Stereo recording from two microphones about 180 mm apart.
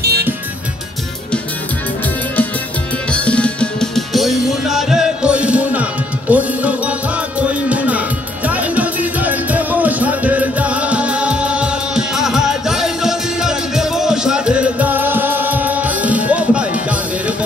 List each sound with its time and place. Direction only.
0.0 s music: 65° right (ahead or behind)
3.1 s music: 5° left (ahead or behind)